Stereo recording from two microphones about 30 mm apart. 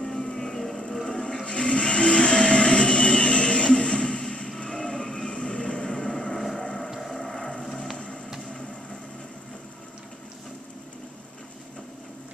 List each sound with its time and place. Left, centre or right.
0.0 s vehicle: centre
1.0 s a sound: left
5.3 s vehicle: left
5.9 s vehicle: left
7.0 s music: centre